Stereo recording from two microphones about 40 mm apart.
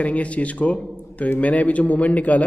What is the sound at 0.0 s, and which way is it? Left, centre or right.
A man's voice, left.